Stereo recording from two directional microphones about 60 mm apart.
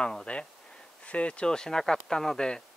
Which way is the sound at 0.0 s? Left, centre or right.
Centre.